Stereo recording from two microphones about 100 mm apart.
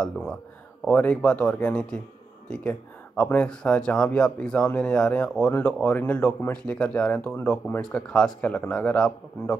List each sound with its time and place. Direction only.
0.0 s speech: 5° left (ahead or behind)